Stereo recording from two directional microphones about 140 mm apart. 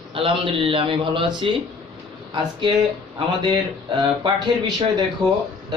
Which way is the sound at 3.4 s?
35° right (ahead or behind).